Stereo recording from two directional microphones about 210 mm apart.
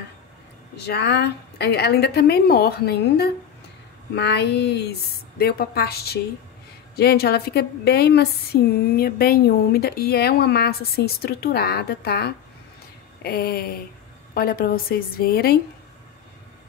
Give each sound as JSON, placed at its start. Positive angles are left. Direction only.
{"t": 0.8, "sound": "speech", "side_deg": 55}